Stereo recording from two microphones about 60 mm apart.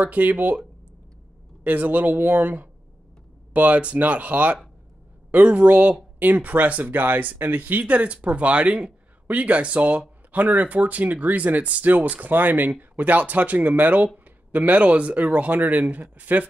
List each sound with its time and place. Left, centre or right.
0.0 s speech: right
1.6 s speech: right